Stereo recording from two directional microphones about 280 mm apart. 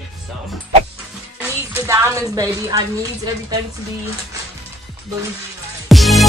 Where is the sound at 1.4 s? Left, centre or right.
Centre.